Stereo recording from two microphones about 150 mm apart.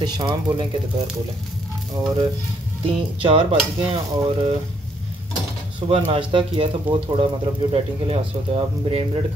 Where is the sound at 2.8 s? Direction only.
35° right (ahead or behind).